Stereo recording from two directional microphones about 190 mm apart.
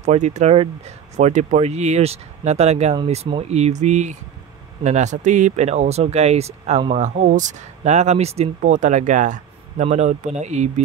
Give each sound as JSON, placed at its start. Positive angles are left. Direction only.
{"t": 0.0, "sound": "speech", "side_deg": -35}